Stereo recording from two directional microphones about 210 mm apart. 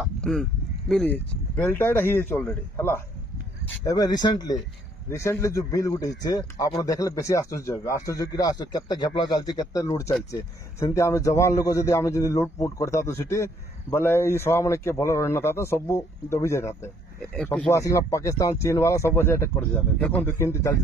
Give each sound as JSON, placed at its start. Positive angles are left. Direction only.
{"t": 0.0, "sound": "a man's voice", "side_deg": 0}